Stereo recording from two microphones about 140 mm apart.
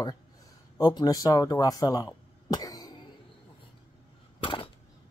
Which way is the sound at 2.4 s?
25° left (ahead or behind).